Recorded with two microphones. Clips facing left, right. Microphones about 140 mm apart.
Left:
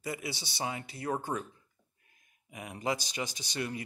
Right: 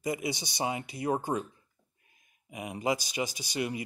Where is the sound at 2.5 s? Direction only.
15° right (ahead or behind).